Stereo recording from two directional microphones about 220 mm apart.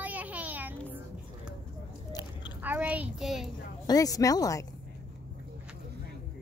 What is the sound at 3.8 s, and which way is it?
Speech, 15° left (ahead or behind).